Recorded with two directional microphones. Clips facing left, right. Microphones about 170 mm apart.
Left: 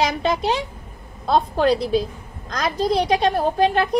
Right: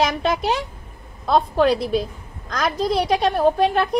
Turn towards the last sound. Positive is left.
turn(degrees=0)  # may be behind; listen again after turning